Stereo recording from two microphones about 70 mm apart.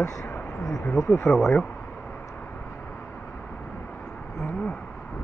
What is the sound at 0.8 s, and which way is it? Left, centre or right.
Speech, left.